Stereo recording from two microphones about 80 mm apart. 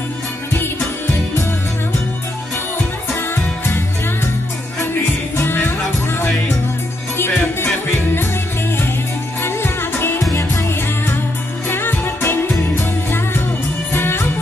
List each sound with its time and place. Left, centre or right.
0.5 s music: left
3.3 s music: left
5.4 s music: left
9.4 s music: left
11.7 s music: left